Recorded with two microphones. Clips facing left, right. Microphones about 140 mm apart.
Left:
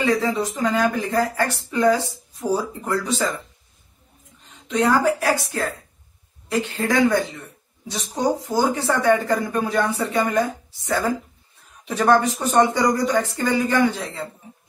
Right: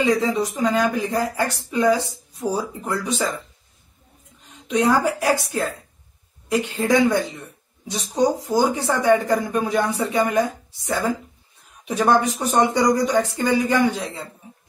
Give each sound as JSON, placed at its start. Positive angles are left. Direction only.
{"t": 0.0, "sound": "speech", "side_deg": -20}
{"t": 4.6, "sound": "speech", "side_deg": -15}
{"t": 8.5, "sound": "speech", "side_deg": -15}